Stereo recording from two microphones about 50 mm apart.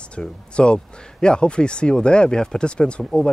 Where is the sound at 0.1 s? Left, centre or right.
Left.